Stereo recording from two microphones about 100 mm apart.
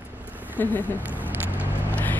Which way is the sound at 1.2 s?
20° right (ahead or behind).